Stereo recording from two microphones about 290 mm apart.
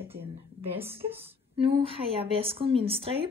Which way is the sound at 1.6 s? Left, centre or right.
Centre.